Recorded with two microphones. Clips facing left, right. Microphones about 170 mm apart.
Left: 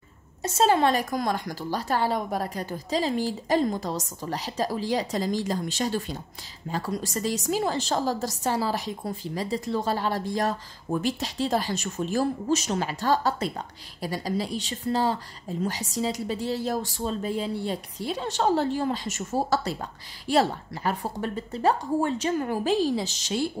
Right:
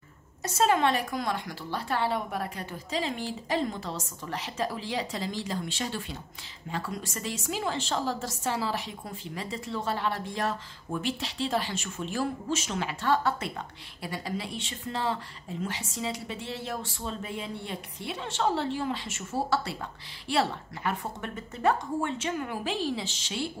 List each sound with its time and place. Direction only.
0.4 s a woman's voice: 30° left (ahead or behind)